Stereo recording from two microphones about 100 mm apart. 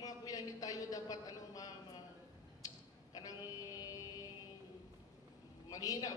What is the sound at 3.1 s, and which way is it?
Mantra, 35° left (ahead or behind).